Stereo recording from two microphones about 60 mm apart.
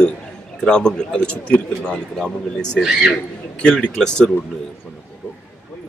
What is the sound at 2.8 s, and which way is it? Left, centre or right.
Speech, centre.